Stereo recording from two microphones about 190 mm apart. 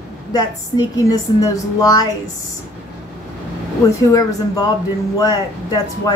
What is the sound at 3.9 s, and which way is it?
A woman's voice, 15° left (ahead or behind).